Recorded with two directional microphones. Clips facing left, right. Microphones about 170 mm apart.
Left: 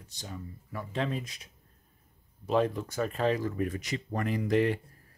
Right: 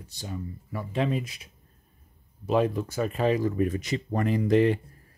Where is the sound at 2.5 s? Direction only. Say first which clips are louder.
Right 3 dB; 10° right (ahead or behind); by 4.8 s 25° right (ahead or behind).